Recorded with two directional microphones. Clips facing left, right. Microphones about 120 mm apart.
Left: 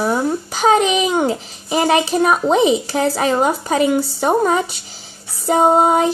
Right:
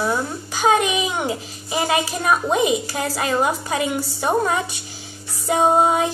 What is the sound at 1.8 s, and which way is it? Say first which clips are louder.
Speech: left 6 dB; 25° left (ahead or behind).